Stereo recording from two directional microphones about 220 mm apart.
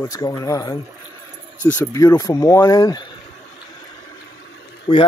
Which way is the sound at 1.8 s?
15° left (ahead or behind).